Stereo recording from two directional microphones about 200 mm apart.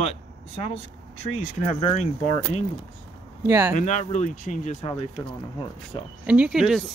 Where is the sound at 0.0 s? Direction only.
30° left (ahead or behind).